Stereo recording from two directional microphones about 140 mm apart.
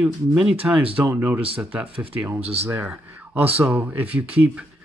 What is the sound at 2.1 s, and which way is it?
Speech, 15° right (ahead or behind).